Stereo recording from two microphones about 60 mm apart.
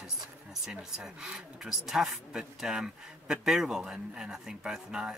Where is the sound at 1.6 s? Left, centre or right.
Centre.